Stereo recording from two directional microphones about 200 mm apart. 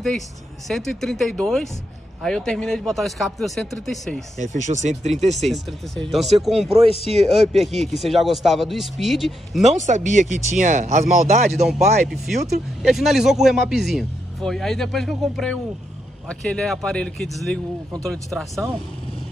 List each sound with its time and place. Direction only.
0.7 s speech: centre (ahead or behind)
4.4 s speech: 40° right (ahead or behind)
5.5 s speech: centre (ahead or behind)
9.6 s speech: 35° right (ahead or behind)
11.6 s speech: centre (ahead or behind)